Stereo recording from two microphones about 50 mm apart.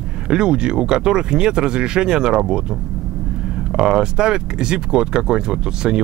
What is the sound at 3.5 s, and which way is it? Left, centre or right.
Speech, centre.